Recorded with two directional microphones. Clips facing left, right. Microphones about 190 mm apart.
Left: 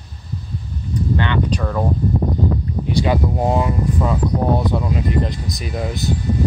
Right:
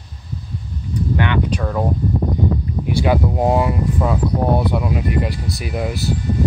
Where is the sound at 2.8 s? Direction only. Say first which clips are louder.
Right 1 dB; 10° right (ahead or behind).